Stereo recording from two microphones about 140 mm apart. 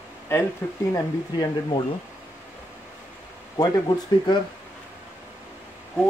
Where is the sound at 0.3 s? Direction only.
15° left (ahead or behind).